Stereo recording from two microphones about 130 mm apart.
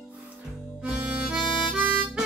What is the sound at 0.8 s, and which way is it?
Harmonica, 10° right (ahead or behind).